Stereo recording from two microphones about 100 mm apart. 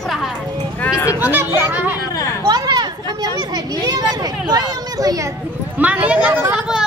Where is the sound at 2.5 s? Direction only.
40° right (ahead or behind).